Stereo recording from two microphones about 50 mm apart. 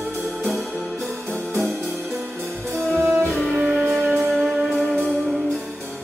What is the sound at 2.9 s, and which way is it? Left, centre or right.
Music, centre.